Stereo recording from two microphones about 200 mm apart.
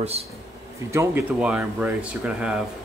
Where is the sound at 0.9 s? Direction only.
15° right (ahead or behind).